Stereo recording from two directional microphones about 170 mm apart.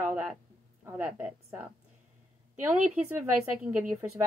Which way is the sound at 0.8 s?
10° right (ahead or behind).